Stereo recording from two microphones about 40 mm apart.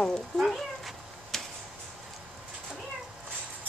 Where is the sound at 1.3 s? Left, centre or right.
Centre.